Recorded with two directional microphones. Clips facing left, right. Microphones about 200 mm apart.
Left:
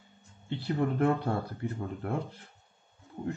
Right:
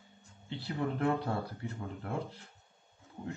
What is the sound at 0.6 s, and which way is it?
Speech, 50° left (ahead or behind).